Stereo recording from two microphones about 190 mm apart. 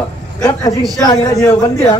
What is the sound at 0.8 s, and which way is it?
Speech, centre (ahead or behind).